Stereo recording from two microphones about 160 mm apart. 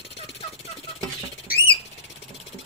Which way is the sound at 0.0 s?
90° left.